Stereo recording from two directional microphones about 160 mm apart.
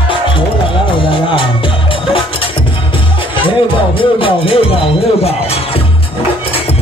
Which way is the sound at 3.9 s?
35° left (ahead or behind).